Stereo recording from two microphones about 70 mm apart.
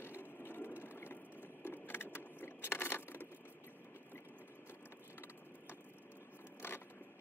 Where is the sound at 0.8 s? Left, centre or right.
Left.